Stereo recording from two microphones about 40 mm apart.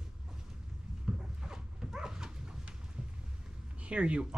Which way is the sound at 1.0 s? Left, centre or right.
Centre.